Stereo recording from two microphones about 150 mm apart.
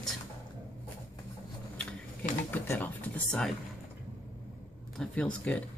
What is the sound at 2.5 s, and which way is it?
Speech, 10° left (ahead or behind).